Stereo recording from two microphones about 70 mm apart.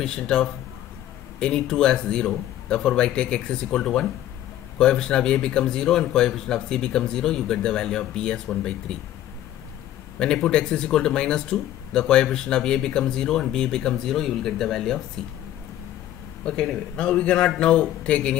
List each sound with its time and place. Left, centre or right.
0.0 s speech: centre
10.1 s speech: centre
16.4 s speech: centre